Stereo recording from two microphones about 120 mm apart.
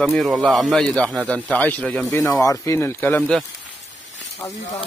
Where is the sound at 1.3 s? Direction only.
10° left (ahead or behind).